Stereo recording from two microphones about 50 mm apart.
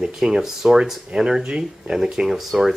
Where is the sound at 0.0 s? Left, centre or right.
Centre.